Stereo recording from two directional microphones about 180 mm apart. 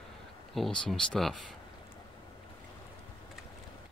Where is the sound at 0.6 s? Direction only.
Centre (ahead or behind).